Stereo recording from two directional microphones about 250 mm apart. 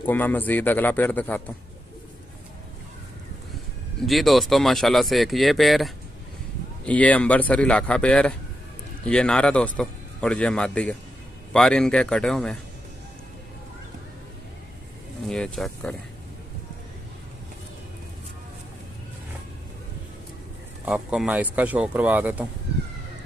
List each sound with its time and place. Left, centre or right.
0.0 s a man's voice: centre
4.0 s a man's voice: centre
15.2 s a man's voice: centre
20.8 s a man's voice: centre